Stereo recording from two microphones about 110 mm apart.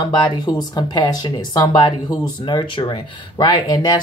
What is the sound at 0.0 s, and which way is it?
Speech, 40° left (ahead or behind).